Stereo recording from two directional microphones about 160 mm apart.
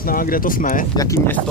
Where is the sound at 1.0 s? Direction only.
20° left (ahead or behind).